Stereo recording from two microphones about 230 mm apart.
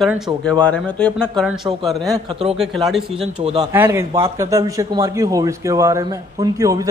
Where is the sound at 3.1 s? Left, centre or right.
Right.